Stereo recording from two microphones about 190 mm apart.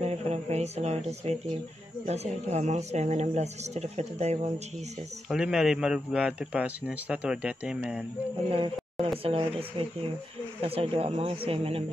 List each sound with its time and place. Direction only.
0.0 s speech: 35° right (ahead or behind)
5.3 s a man's voice: centre (ahead or behind)
8.5 s speech: 25° right (ahead or behind)